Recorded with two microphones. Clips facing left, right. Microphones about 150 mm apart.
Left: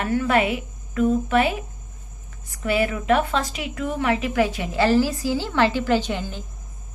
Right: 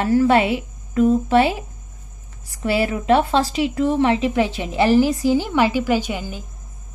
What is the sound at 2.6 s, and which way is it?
A child's voice, 30° right (ahead or behind).